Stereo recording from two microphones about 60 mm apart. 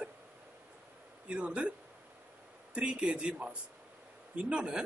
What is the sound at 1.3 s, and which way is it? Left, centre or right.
Speech, centre.